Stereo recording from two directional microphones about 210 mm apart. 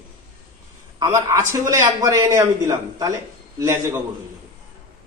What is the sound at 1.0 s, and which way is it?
A man's voice, 15° right (ahead or behind).